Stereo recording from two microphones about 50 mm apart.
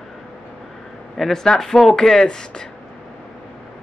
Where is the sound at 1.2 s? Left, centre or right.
Centre.